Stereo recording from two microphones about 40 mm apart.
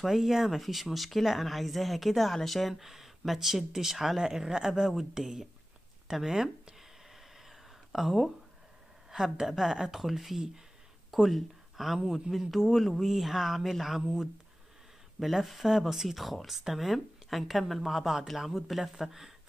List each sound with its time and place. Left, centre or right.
0.1 s speech: centre
2.7 s speech: centre
6.0 s a sound: centre
9.1 s a woman's voice: centre
15.1 s speech: centre